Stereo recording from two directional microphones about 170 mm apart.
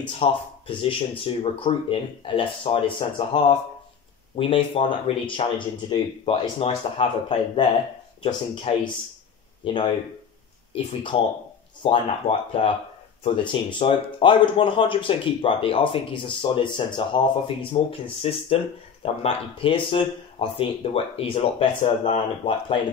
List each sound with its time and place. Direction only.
0.2 s speech: 30° left (ahead or behind)